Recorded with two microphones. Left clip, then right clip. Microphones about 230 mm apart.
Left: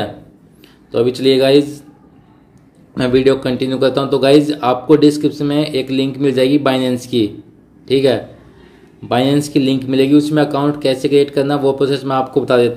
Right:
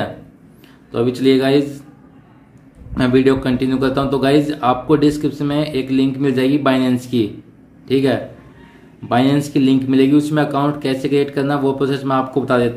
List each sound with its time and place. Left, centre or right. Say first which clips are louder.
0.9 s speech: left 3 dB; centre
2.9 s speech: left 2 dB; centre